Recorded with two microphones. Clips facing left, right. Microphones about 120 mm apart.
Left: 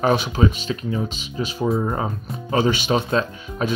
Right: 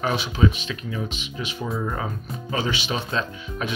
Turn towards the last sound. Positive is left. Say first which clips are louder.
# left 5 dB
turn(degrees=40)  # may be behind; listen again after turning